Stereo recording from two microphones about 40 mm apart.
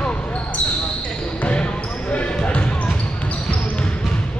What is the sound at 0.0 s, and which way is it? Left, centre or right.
Basketball bounce, left.